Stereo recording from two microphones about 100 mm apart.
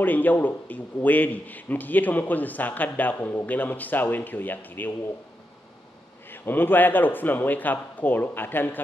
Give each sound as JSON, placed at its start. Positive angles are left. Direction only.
{"t": 0.0, "sound": "a man's voice", "side_deg": 20}
{"t": 6.3, "sound": "a man's voice", "side_deg": 20}